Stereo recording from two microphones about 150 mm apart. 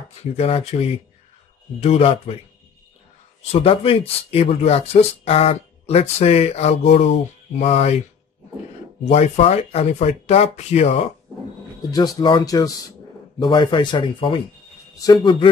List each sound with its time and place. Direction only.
0.2 s speech: 45° left (ahead or behind)
3.5 s speech: 40° left (ahead or behind)
9.0 s speech: 45° left (ahead or behind)
12.2 s speech: 25° left (ahead or behind)
15.0 s speech: 25° left (ahead or behind)